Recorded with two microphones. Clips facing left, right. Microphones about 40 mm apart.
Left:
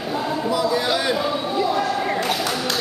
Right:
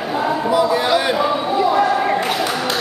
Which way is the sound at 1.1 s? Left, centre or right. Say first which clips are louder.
Right 5 dB; centre.